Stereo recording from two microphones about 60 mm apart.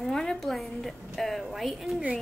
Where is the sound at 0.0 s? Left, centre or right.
Centre.